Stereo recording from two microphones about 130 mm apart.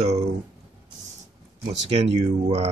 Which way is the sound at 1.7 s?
55° right (ahead or behind).